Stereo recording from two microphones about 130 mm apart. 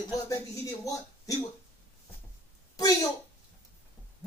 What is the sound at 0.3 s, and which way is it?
Speech, 25° left (ahead or behind).